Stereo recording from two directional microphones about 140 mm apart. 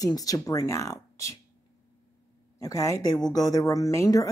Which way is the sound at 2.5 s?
25° left (ahead or behind).